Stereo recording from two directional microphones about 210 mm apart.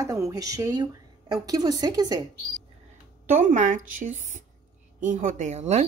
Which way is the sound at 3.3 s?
35° right (ahead or behind).